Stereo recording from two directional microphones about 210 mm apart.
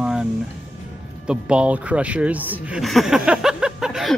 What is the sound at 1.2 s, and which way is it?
Speech, 5° right (ahead or behind).